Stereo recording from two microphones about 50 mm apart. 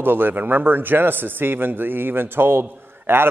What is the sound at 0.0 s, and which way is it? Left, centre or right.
A man's voice, right.